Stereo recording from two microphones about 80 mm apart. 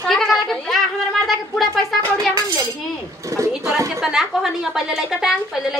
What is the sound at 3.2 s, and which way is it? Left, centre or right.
Speech, right.